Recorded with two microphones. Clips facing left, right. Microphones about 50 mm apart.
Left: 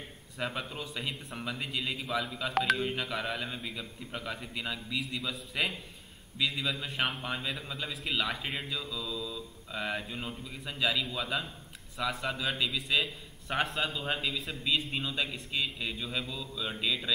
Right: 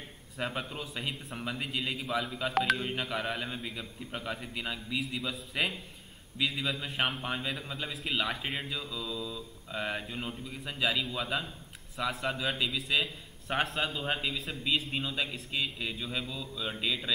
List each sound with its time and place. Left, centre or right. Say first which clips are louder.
0.4 s a man's voice: even; centre